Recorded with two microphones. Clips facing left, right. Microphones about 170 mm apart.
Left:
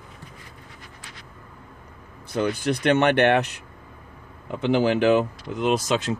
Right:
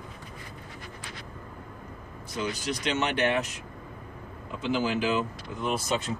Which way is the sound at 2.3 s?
60° left (ahead or behind).